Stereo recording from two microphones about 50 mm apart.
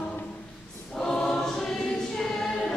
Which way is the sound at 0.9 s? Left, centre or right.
Centre.